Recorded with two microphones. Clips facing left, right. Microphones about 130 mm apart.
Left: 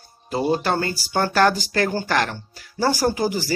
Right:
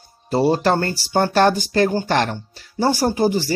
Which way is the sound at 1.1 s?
25° right (ahead or behind).